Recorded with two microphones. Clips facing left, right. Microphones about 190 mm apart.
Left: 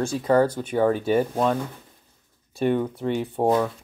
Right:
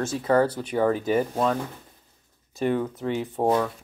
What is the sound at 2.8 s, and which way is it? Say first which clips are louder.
Speech: left 2 dB; 10° left (ahead or behind).